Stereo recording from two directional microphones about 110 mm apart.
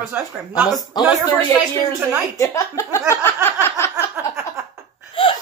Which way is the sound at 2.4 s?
30° left (ahead or behind).